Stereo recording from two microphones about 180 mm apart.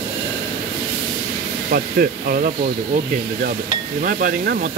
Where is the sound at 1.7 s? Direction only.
55° right (ahead or behind).